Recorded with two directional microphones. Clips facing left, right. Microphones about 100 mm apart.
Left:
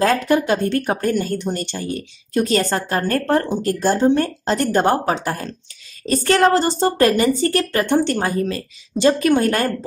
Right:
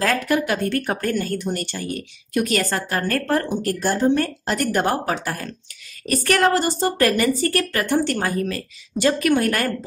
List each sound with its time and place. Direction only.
0.0 s speech: 25° left (ahead or behind)